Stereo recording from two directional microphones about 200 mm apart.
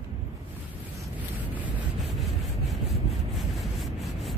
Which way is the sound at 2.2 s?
Centre (ahead or behind).